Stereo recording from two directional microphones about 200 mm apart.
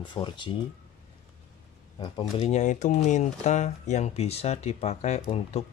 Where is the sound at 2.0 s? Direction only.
25° left (ahead or behind).